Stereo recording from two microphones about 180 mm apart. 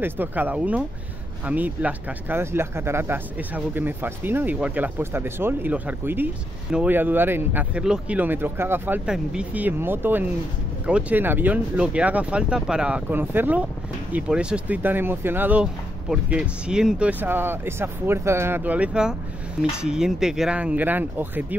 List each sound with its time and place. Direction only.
0.0 s speech: 10° right (ahead or behind)